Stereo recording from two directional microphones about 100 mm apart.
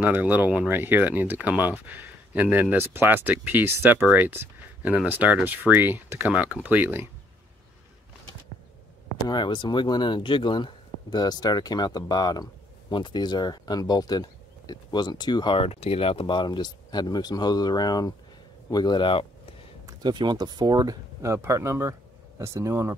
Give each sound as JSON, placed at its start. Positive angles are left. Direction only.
{"t": 0.0, "sound": "speech", "side_deg": -15}
{"t": 9.3, "sound": "speech", "side_deg": 50}
{"t": 15.5, "sound": "speech", "side_deg": 85}
{"t": 19.9, "sound": "speech", "side_deg": -45}